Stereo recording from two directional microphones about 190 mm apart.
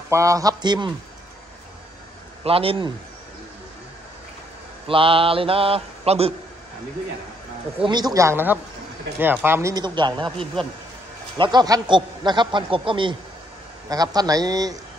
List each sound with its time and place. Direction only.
0.1 s a man's voice: 15° right (ahead or behind)
2.4 s a man's voice: 30° right (ahead or behind)
4.8 s a man's voice: 30° right (ahead or behind)
7.8 s speech: 20° right (ahead or behind)
10.3 s a man's voice: 5° left (ahead or behind)
11.3 s a man's voice: 25° right (ahead or behind)